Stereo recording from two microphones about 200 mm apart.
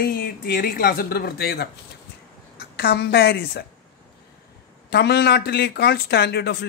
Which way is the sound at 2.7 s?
55° left (ahead or behind).